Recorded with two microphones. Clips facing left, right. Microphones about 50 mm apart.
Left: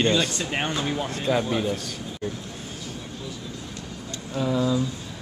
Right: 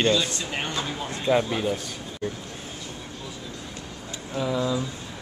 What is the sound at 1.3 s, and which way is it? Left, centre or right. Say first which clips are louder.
Speech: right 2 dB; centre.